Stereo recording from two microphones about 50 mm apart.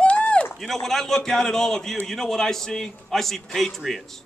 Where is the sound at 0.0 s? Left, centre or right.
Left.